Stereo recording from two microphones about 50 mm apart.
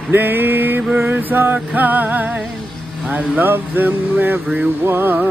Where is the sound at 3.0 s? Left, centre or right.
Right.